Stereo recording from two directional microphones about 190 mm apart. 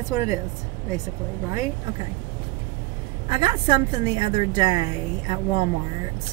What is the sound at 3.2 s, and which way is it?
A woman's voice, 25° right (ahead or behind).